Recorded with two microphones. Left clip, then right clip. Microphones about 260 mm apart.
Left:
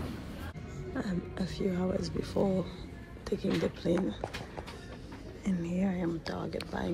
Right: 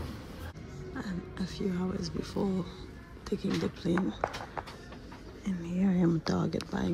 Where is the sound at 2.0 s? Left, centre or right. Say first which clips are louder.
Left 3 dB; centre.